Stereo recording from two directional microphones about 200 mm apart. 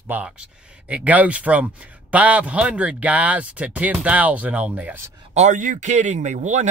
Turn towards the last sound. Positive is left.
turn(degrees=-35)  # may be behind; listen again after turning